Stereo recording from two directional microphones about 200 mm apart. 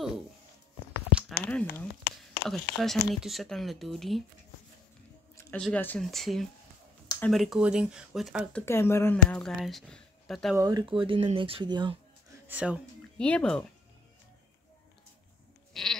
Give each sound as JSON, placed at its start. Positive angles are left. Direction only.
{"t": 1.4, "sound": "speech", "side_deg": 5}
{"t": 2.1, "sound": "a sound", "side_deg": 50}
{"t": 2.5, "sound": "speech", "side_deg": 0}
{"t": 5.4, "sound": "speech", "side_deg": 5}
{"t": 8.6, "sound": "speech", "side_deg": 10}
{"t": 10.6, "sound": "speech", "side_deg": -20}
{"t": 12.4, "sound": "speech", "side_deg": -5}
{"t": 13.2, "sound": "speech", "side_deg": 5}
{"t": 15.7, "sound": "sheep", "side_deg": 0}